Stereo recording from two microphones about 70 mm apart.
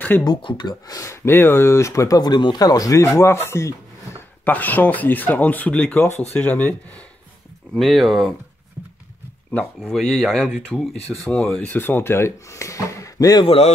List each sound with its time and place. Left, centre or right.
0.2 s speech: left
1.0 s speech: left
3.0 s speech: left
4.5 s speech: left
7.7 s speech: centre
8.8 s horse: right
9.9 s speech: centre
10.7 s speech: left
11.7 s speech: left